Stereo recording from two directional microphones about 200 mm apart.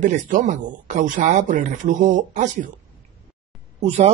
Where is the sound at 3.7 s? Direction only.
35° right (ahead or behind).